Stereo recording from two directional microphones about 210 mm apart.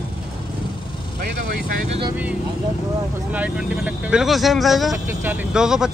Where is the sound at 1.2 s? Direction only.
45° right (ahead or behind).